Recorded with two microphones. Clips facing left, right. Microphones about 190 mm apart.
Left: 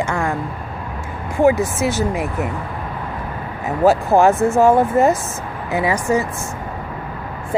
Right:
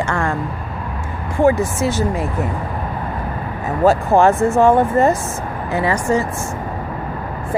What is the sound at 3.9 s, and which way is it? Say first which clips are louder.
Speech: even; 5° left (ahead or behind).